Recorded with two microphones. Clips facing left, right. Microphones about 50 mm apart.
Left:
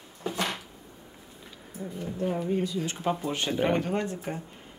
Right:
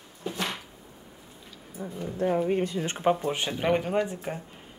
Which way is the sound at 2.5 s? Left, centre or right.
Right.